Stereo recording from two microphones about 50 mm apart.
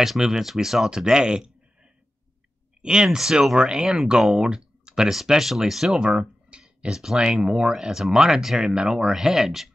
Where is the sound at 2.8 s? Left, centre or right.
Centre.